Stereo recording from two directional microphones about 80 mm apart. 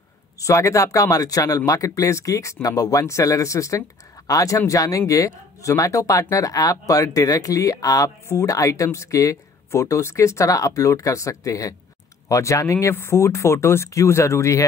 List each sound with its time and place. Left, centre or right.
0.4 s speech: left